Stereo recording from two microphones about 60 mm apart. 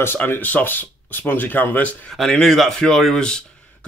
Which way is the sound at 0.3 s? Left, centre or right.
Left.